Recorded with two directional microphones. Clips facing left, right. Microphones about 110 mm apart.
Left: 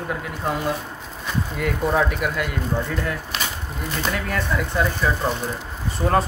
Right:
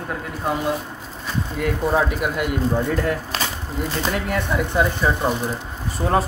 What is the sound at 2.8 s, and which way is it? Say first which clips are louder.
Speech: right 5 dB; 45° right (ahead or behind).